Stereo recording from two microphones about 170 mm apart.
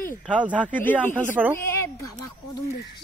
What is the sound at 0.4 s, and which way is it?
Speech, 10° right (ahead or behind).